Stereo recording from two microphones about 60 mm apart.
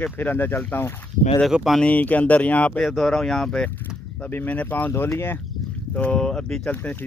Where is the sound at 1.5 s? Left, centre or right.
Centre.